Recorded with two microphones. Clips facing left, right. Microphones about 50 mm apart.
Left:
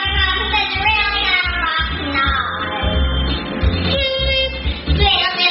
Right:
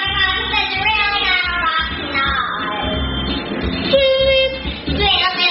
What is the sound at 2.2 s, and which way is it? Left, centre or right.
Music, right.